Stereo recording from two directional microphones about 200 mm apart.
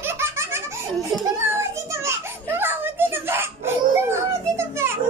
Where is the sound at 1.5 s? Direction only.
15° right (ahead or behind).